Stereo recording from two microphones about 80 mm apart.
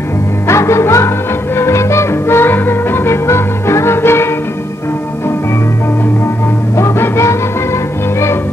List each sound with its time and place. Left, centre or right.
0.5 s music: left
6.8 s music: left